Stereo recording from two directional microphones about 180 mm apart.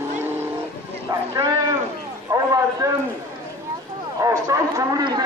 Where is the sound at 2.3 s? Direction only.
20° right (ahead or behind).